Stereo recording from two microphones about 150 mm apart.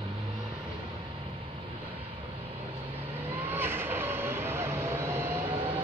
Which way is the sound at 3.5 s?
15° right (ahead or behind).